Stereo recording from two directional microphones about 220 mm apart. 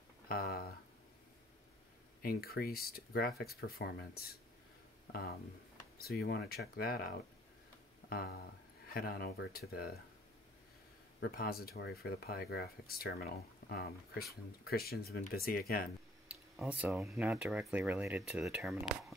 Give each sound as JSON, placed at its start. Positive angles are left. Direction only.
{"t": 0.3, "sound": "a sound", "side_deg": 45}
{"t": 2.2, "sound": "speech", "side_deg": 45}
{"t": 11.1, "sound": "speech", "side_deg": 45}
{"t": 16.3, "sound": "speech", "side_deg": -5}